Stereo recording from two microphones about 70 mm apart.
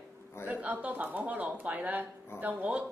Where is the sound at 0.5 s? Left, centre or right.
Right.